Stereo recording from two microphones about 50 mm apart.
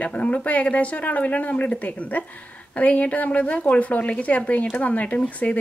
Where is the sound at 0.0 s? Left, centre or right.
Left.